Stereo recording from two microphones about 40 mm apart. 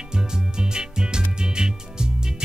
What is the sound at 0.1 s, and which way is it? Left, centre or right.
Music, centre.